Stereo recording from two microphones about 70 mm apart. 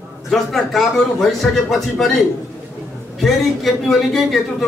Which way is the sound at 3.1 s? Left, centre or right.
Centre.